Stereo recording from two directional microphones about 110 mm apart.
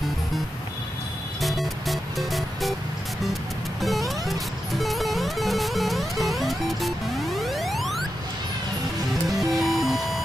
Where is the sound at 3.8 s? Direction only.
Centre (ahead or behind).